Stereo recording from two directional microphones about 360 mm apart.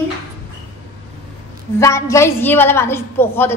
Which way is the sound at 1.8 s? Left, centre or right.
Centre.